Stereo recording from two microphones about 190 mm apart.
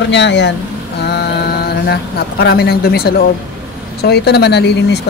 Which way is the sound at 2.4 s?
60° left (ahead or behind).